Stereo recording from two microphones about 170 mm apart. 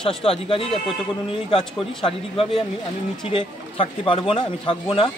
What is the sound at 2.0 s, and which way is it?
A man's voice, 30° left (ahead or behind).